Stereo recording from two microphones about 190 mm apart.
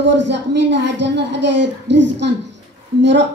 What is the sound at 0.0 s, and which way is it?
A woman's voice, 65° right (ahead or behind).